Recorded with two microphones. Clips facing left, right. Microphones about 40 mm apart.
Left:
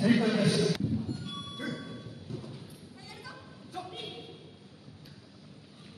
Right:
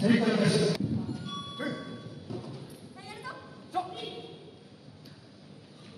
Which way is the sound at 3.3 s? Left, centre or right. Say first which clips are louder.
Right 6 dB; right.